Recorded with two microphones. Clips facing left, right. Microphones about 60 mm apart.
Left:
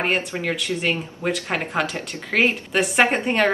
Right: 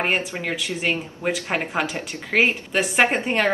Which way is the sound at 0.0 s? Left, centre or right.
Centre.